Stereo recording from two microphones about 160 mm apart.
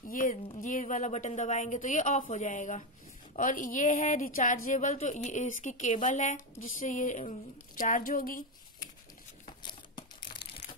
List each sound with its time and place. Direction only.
0.1 s a woman's voice: 60° left (ahead or behind)
9.6 s crumpling: 25° left (ahead or behind)